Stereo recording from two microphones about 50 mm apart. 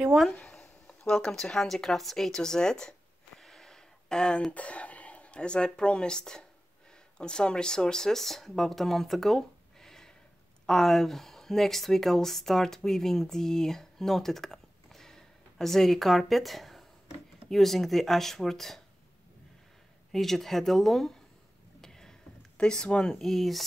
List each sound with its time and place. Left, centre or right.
0.3 s speech: centre
3.3 s a sound: centre
4.5 s speech: left; by 18.8 s centre
20.1 s speech: centre
21.8 s rowboat: centre
22.6 s speech: centre
23.2 s speech: centre